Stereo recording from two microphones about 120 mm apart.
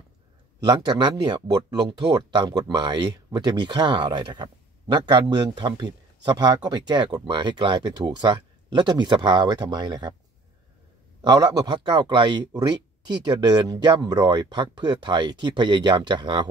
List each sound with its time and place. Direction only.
0.7 s speech: 40° right (ahead or behind)
11.1 s speech: 35° right (ahead or behind)